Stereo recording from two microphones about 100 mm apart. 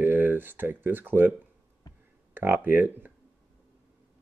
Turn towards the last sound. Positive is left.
turn(degrees=-20)  # may be behind; listen again after turning